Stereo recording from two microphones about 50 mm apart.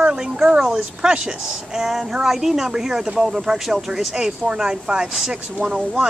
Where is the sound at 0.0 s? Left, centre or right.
Centre.